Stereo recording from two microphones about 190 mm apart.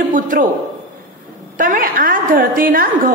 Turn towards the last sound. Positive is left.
turn(degrees=-50)  # may be behind; listen again after turning